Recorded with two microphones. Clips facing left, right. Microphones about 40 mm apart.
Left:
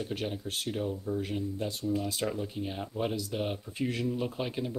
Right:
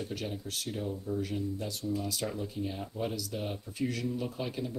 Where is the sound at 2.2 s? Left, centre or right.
Centre.